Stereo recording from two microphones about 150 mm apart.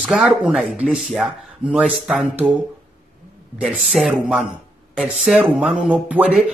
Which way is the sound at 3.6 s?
Centre (ahead or behind).